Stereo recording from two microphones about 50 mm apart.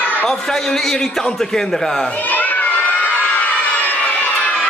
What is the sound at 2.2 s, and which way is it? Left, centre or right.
Children shouting, left.